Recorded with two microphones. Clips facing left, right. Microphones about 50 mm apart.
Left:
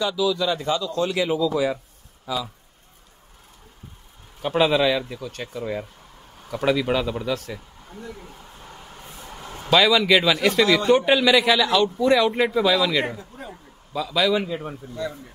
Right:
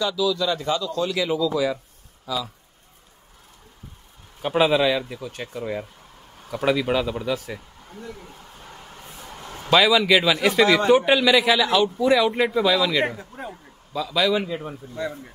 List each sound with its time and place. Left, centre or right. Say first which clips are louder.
0.0 s a man's voice: even; centre
4.4 s speech: even; centre
7.9 s a sound: even; centre
9.7 s a man's voice: even; centre
15.0 s speech: right 1 dB; centre